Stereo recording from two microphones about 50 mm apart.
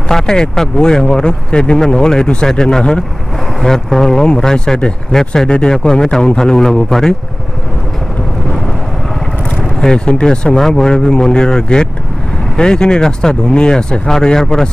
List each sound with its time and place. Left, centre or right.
0.1 s speech: centre
9.6 s speech: centre